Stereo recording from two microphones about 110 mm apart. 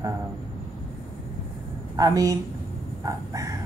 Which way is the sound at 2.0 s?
30° right (ahead or behind).